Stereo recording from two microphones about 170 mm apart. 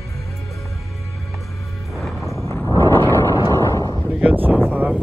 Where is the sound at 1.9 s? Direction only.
Centre (ahead or behind).